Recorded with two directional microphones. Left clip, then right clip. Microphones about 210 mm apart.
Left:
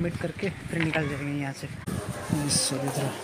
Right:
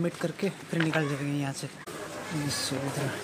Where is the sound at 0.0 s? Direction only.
10° right (ahead or behind).